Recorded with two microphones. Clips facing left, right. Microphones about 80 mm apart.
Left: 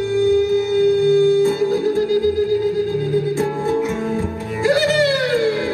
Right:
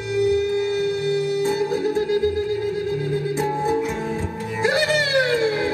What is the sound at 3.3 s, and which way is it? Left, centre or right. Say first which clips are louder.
Music: left 2 dB; centre.